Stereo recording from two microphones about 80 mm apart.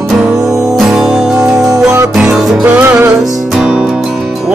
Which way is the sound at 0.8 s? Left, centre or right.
Centre.